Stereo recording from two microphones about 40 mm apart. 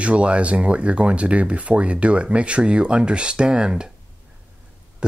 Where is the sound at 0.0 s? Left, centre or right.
Right.